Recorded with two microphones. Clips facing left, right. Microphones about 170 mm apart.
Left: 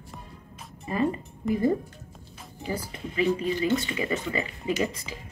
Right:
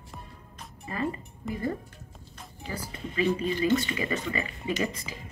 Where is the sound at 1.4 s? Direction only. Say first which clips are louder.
Left 8 dB; centre (ahead or behind).